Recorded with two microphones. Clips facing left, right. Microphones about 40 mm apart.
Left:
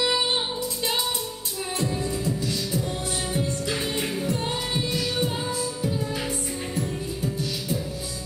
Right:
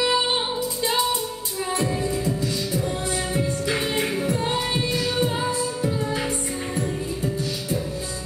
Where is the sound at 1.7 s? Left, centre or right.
Centre.